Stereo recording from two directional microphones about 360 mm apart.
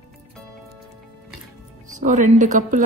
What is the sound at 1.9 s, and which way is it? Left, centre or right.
Speech, right.